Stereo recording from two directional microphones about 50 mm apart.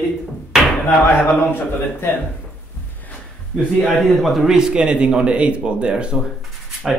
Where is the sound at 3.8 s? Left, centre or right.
Centre.